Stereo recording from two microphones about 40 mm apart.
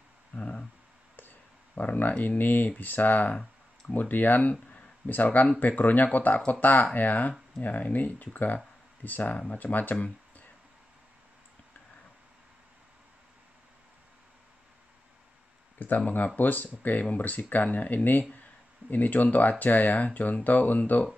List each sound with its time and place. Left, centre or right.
0.3 s a sound: left
1.8 s speech: left
15.8 s speech: left